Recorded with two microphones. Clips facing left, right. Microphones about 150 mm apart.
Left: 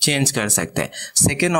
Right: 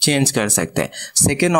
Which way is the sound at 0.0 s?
35° right (ahead or behind).